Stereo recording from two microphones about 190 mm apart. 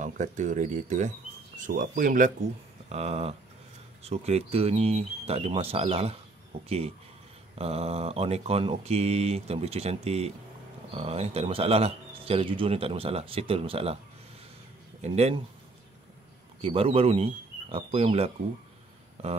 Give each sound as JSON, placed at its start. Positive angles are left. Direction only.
{"t": 0.0, "sound": "speech", "side_deg": -40}
{"t": 2.9, "sound": "speech", "side_deg": -35}
{"t": 7.5, "sound": "speech", "side_deg": -35}
{"t": 15.0, "sound": "speech", "side_deg": -35}
{"t": 16.6, "sound": "speech", "side_deg": -30}